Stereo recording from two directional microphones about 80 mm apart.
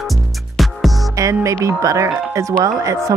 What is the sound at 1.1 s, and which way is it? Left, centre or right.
Speech, right.